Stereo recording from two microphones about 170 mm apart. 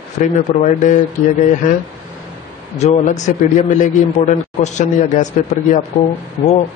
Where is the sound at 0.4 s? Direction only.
45° left (ahead or behind).